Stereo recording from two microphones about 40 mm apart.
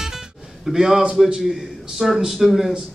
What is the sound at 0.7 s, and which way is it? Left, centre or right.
A man's voice, centre.